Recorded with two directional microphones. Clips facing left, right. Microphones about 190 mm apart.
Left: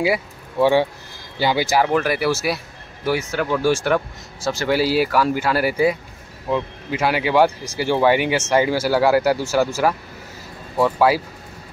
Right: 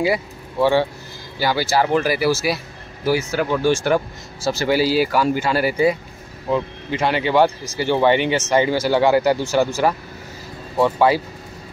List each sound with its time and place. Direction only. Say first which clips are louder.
0.0 s speech: even; 10° left (ahead or behind)
1.9 s speech: right 1 dB; centre (ahead or behind)